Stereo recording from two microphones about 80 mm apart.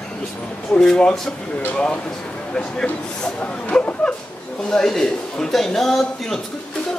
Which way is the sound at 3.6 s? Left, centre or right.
Centre.